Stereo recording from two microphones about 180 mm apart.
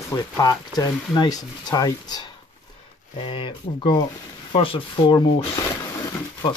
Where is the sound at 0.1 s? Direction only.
20° left (ahead or behind).